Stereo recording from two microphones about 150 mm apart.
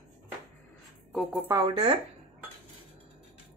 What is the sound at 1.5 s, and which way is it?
Speech, 20° right (ahead or behind).